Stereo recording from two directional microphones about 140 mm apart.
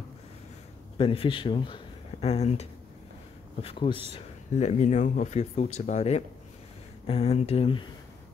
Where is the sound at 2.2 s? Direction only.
50° left (ahead or behind).